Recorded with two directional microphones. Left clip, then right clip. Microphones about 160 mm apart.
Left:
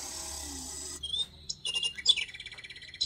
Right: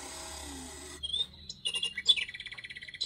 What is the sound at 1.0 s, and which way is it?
Bird, 15° right (ahead or behind).